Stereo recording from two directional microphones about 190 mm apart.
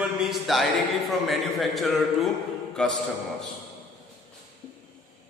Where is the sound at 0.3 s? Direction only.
Centre (ahead or behind).